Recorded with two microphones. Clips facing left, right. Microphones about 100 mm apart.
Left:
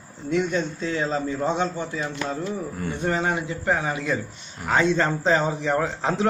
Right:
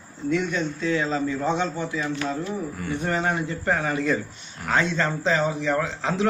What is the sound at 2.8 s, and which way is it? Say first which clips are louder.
A man's voice: left 1 dB; 25° left (ahead or behind).